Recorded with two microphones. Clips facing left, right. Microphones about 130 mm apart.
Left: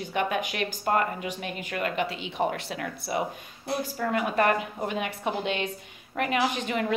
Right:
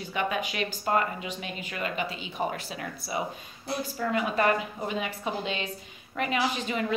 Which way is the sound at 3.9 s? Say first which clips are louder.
Left 1 dB; 45° left (ahead or behind).